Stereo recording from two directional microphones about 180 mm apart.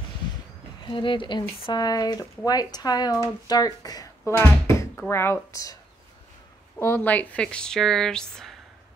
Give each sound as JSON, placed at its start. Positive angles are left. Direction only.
{"t": 0.8, "sound": "speech", "side_deg": 25}
{"t": 6.8, "sound": "speech", "side_deg": 10}